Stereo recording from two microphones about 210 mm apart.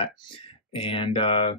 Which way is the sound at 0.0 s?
25° left (ahead or behind).